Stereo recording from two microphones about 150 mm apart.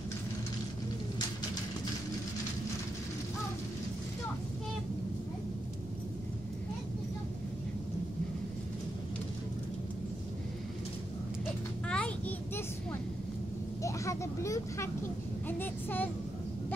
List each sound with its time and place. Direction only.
11.9 s children playing: 10° left (ahead or behind)
13.8 s speech: 20° left (ahead or behind)